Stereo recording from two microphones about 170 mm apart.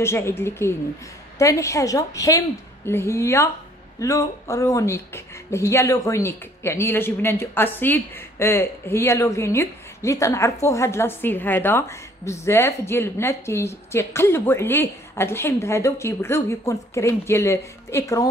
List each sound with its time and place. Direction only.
0.0 s speech: 15° left (ahead or behind)